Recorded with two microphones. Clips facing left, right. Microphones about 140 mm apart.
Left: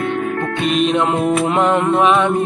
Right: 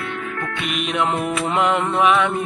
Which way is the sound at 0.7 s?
30° left (ahead or behind).